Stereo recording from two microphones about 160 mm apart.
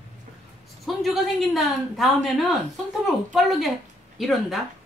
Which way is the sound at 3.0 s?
Centre (ahead or behind).